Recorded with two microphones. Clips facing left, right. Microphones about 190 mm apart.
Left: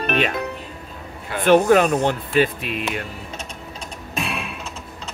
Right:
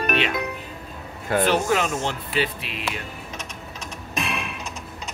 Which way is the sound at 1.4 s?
50° left (ahead or behind).